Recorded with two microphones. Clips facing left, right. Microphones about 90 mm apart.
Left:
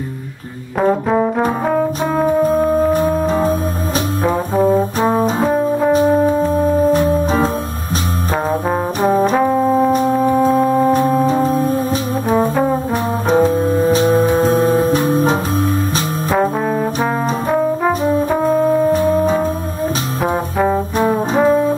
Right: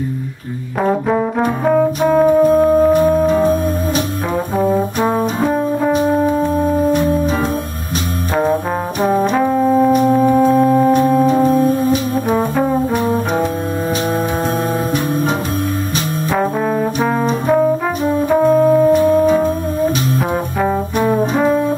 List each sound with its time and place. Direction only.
0.7 s brass instrument: centre (ahead or behind)
4.6 s brass instrument: centre (ahead or behind)
5.4 s music: 5° left (ahead or behind)
6.9 s organ: 35° left (ahead or behind)
9.3 s brass instrument: 5° left (ahead or behind)
10.0 s music: centre (ahead or behind)
12.3 s brass instrument: centre (ahead or behind)
14.0 s music: centre (ahead or behind)
14.8 s music: 35° left (ahead or behind)
16.3 s trombone: 5° left (ahead or behind)
20.5 s brass instrument: centre (ahead or behind)